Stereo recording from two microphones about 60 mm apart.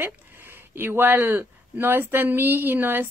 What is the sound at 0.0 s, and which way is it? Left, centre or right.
A woman's voice, right.